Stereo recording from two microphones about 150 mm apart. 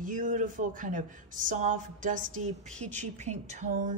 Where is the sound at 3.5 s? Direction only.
55° right (ahead or behind).